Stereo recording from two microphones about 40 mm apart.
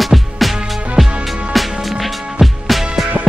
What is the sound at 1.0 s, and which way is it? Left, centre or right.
Music, centre.